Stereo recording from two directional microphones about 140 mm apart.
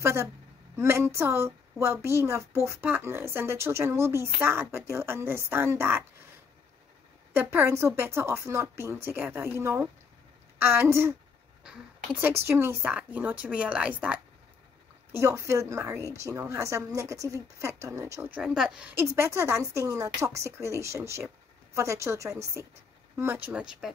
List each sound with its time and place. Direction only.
0.0 s a woman's voice: 20° right (ahead or behind)
7.3 s a woman's voice: 15° right (ahead or behind)
12.2 s a woman's voice: 15° right (ahead or behind)
15.1 s a woman's voice: 20° right (ahead or behind)
18.3 s a woman's voice: 5° right (ahead or behind)